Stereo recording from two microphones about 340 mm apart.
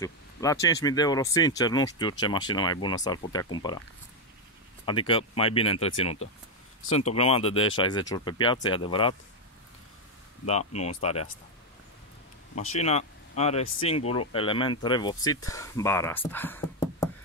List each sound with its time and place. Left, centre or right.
0.0 s speech: centre
4.8 s speech: centre
10.7 s speech: centre
12.5 s speech: centre